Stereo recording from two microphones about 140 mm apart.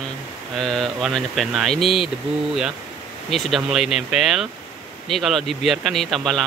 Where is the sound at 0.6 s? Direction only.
5° left (ahead or behind).